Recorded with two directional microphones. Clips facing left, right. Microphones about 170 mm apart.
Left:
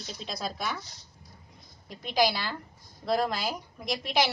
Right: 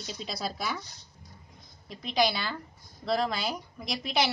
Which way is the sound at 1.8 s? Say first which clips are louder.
Right 1 dB; 5° left (ahead or behind).